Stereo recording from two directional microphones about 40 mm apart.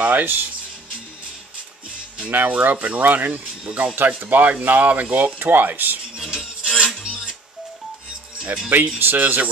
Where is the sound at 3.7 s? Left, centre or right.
Right.